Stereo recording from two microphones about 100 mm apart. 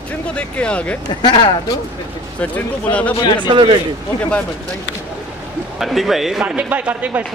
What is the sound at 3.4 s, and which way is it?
Speech, 55° right (ahead or behind).